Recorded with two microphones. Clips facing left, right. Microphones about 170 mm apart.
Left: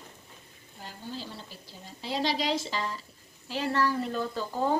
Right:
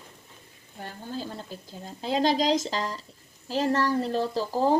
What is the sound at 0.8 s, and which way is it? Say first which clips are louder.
A woman's voice: right 5 dB; 50° right (ahead or behind).